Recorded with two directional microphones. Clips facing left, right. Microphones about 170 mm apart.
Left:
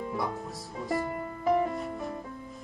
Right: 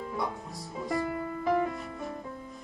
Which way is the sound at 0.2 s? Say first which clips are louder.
Left 1 dB; centre (ahead or behind).